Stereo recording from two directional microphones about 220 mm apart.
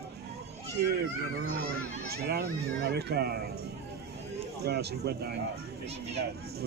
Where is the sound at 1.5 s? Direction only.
45° right (ahead or behind).